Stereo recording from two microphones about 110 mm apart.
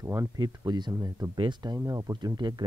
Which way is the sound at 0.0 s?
25° right (ahead or behind).